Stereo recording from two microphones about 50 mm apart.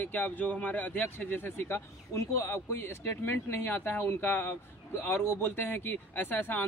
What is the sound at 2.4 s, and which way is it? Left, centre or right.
Speech, left.